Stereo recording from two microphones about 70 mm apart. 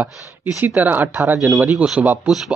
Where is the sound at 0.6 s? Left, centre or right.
Right.